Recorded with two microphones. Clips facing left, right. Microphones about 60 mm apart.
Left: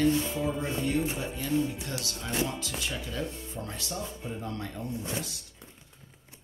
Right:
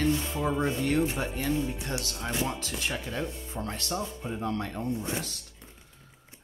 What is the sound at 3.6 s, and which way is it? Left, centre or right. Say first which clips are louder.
Music: right 5 dB; right.